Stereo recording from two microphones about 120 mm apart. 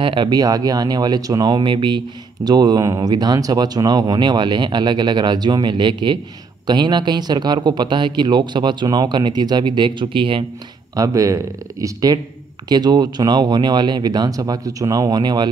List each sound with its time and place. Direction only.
0.0 s speech: 45° right (ahead or behind)
11.0 s speech: 25° right (ahead or behind)